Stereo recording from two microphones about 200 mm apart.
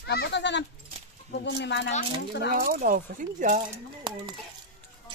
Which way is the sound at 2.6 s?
45° right (ahead or behind).